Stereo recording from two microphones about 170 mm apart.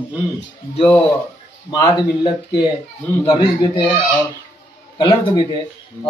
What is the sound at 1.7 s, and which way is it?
Speech, 25° left (ahead or behind).